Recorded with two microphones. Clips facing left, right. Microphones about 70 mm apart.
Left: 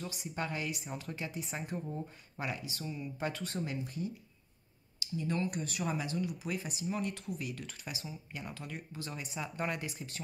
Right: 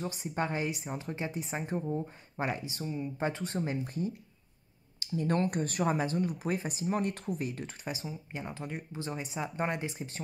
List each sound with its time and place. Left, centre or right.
0.1 s speech: right